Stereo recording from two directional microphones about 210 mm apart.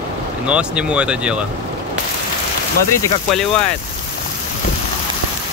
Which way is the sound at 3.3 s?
Centre (ahead or behind).